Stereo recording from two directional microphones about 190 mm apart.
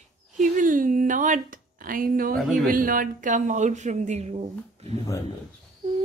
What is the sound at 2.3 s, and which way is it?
Speech, centre (ahead or behind).